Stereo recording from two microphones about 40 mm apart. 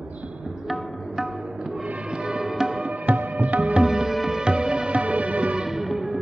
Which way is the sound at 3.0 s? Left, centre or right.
Right.